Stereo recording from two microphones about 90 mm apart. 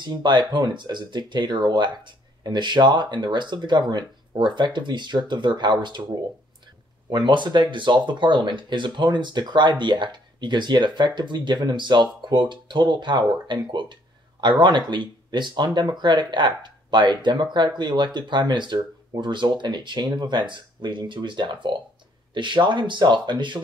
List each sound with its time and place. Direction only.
0.0 s speech: 55° right (ahead or behind)
7.1 s speech: 60° right (ahead or behind)